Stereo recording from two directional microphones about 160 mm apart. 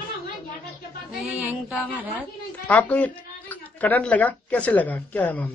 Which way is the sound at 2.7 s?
10° left (ahead or behind).